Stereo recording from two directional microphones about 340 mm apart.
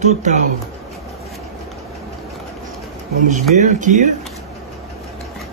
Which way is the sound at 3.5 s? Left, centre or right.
Right.